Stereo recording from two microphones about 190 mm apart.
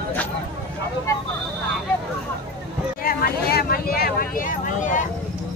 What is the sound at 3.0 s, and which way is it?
Speech, 50° left (ahead or behind).